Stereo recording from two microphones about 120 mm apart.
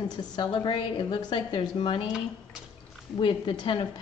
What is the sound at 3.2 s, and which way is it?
Speech, 45° left (ahead or behind).